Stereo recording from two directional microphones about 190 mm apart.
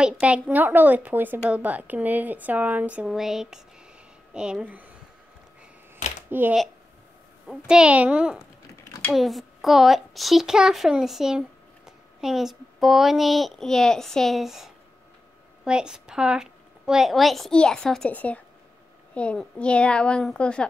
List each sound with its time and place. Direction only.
0.0 s a woman's voice: 5° right (ahead or behind)
6.3 s a woman's voice: 10° right (ahead or behind)
8.8 s a sound: 15° left (ahead or behind)
9.1 s a woman's voice: centre (ahead or behind)